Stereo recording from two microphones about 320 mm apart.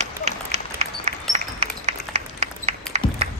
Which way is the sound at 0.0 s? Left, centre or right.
Right.